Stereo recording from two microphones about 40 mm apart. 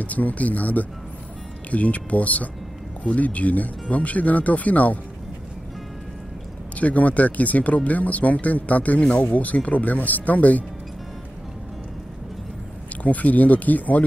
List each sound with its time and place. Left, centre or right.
0.0 s speech: left
6.8 s speech: left
12.9 s speech: left